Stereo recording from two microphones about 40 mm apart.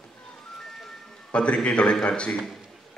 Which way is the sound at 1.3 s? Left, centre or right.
Left.